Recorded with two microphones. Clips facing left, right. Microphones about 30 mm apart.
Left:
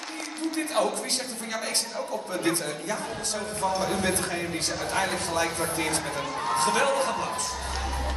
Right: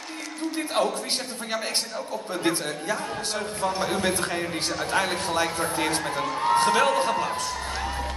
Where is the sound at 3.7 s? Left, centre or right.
Right.